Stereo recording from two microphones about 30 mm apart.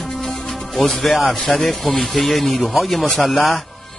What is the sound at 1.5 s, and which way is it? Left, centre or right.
A man's voice, centre.